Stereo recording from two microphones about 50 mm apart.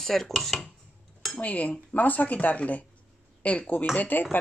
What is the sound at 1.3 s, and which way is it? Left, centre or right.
Speech, left.